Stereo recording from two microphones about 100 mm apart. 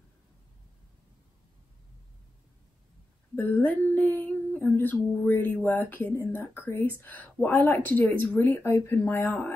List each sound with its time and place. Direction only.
3.3 s speech: 20° left (ahead or behind)